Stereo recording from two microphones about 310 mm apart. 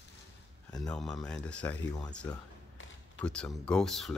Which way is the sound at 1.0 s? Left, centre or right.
Centre.